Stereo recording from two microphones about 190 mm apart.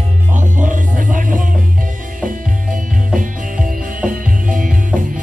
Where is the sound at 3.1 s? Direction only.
45° right (ahead or behind).